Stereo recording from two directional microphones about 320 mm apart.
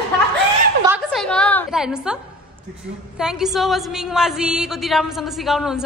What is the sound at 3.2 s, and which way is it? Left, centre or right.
A woman's voice, centre.